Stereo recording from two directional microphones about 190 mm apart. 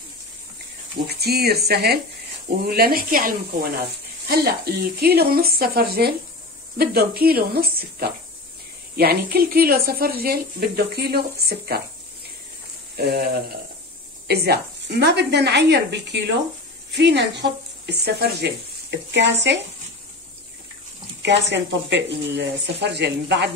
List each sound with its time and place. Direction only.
1.0 s speech: 55° right (ahead or behind)
12.9 s speech: 55° right (ahead or behind)
21.2 s speech: 65° right (ahead or behind)